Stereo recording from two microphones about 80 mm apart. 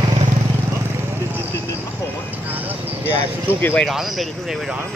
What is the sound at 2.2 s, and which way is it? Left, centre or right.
Vehicle, right.